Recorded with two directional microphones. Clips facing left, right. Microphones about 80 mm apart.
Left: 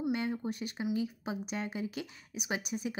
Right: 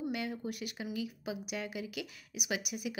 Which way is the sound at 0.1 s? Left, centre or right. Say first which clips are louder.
Left 4 dB; left.